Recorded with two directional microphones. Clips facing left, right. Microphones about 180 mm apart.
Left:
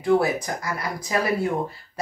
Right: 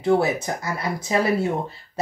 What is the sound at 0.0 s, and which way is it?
Speech, 25° right (ahead or behind).